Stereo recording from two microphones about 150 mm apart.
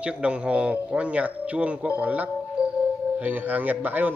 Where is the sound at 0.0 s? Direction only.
5° right (ahead or behind).